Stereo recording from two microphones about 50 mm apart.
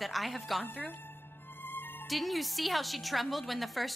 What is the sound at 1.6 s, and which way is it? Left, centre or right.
Music, left.